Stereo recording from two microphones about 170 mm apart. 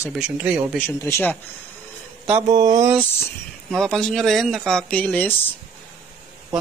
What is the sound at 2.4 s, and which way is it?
Speech, 25° right (ahead or behind).